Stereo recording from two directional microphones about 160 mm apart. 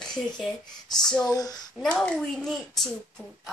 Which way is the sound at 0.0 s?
5° left (ahead or behind).